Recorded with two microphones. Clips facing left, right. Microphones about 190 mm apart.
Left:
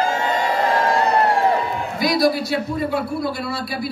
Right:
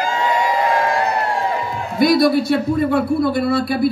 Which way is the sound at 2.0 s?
55° right (ahead or behind).